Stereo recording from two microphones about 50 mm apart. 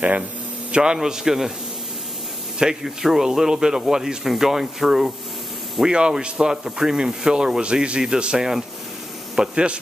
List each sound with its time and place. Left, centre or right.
0.7 s a man's voice: right
0.9 s speech: centre
2.6 s speech: centre